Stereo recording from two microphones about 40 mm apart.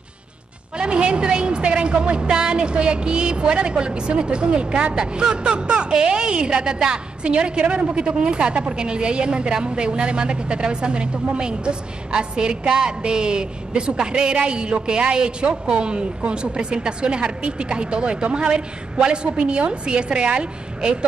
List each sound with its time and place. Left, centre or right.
0.7 s a woman's voice: right